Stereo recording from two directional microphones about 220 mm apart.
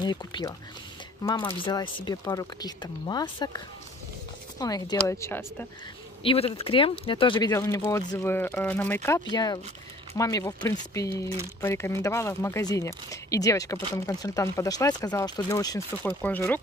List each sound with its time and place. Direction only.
0.0 s speech: 20° left (ahead or behind)
6.2 s speech: 25° left (ahead or behind); by 16.5 s 5° left (ahead or behind)